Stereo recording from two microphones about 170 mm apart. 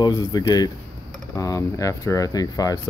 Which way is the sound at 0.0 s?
20° left (ahead or behind).